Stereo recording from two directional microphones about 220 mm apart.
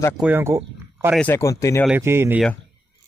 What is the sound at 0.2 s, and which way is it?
Speech, 10° right (ahead or behind).